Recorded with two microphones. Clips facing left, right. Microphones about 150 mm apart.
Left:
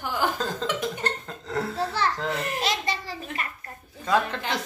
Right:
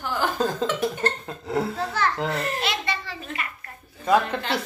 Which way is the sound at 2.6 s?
40° left (ahead or behind).